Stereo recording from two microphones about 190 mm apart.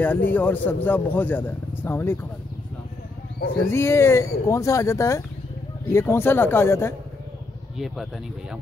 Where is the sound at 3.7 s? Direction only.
15° left (ahead or behind).